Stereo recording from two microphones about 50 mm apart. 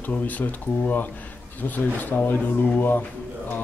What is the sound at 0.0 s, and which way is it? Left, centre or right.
Speech, left.